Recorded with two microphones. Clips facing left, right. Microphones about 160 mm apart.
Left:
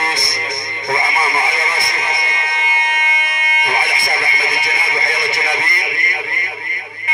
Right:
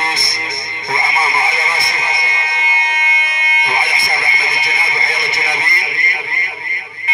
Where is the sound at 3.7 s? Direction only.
25° right (ahead or behind).